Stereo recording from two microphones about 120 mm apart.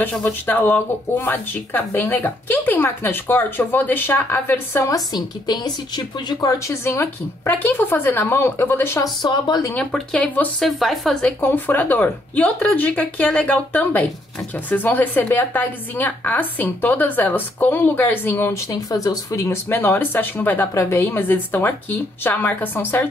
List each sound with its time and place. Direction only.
0.2 s speech: 15° left (ahead or behind); by 6.5 s 35° left (ahead or behind)
6.7 s a woman's voice: 20° left (ahead or behind)
9.2 s speech: 35° left (ahead or behind)
9.8 s speech: 10° left (ahead or behind)
10.6 s speech: centre (ahead or behind)
11.2 s speech: 15° left (ahead or behind)
18.7 s a woman's voice: 30° left (ahead or behind)